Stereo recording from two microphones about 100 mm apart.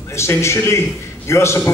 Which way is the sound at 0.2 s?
30° left (ahead or behind).